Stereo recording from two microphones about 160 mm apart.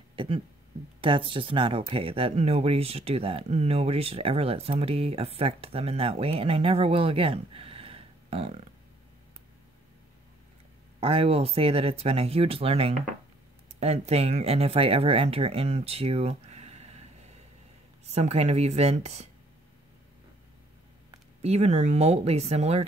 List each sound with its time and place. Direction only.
0.1 s a sound: 30° right (ahead or behind)
1.0 s speech: 30° right (ahead or behind)
11.0 s speech: 35° right (ahead or behind)
18.0 s speech: 45° right (ahead or behind)
21.4 s speech: 40° right (ahead or behind)